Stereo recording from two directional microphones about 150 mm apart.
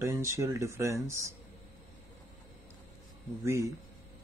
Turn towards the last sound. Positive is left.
turn(degrees=-20)  # may be behind; listen again after turning